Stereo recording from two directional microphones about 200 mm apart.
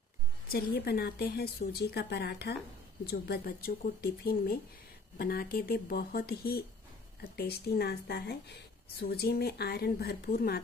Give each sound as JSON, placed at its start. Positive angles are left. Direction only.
{"t": 0.5, "sound": "speech", "side_deg": 50}